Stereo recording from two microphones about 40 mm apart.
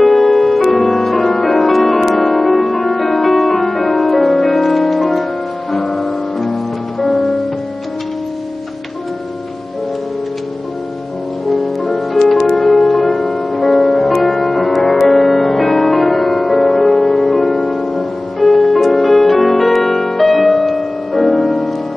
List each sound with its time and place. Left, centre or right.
0.0 s music: centre
11.4 s music: centre